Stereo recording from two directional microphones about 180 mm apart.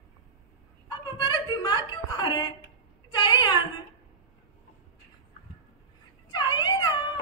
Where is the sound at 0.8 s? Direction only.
25° left (ahead or behind).